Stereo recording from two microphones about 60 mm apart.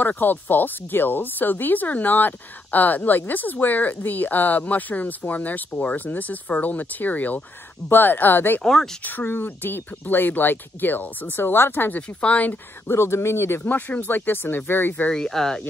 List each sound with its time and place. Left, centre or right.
0.0 s speech: left
12.2 s speech: left
12.8 s speech: left
13.7 s speech: left
15.0 s speech: centre